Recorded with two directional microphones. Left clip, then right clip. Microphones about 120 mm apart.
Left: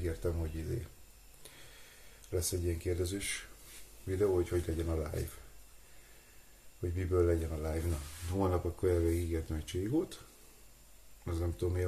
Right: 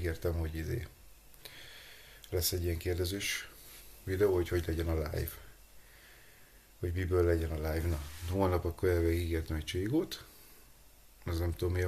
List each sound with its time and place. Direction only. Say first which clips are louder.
0.0 s speech: right 1 dB; 15° right (ahead or behind)
2.3 s speech: right 1 dB; 5° right (ahead or behind)
6.8 s speech: right 1 dB; 15° right (ahead or behind)
11.2 s speech: right 1 dB; 15° right (ahead or behind)